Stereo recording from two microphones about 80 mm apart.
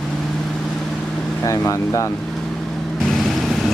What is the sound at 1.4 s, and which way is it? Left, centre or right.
Speech, left.